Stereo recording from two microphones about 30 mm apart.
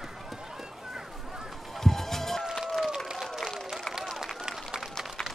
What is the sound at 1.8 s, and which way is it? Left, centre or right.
Run, centre.